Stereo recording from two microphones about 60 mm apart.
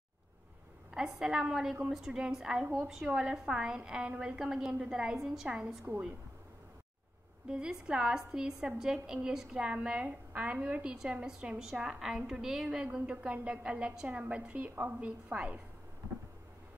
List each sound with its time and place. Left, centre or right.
0.9 s a woman's voice: centre
2.6 s a woman's voice: right
3.2 s a woman's voice: centre
5.9 s a woman's voice: right
7.4 s a woman's voice: centre
12.8 s a woman's voice: centre